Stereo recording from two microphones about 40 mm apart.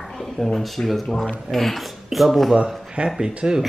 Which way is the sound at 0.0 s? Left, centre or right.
Centre.